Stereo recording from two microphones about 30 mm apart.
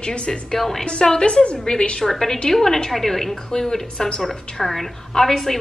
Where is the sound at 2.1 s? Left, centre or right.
Centre.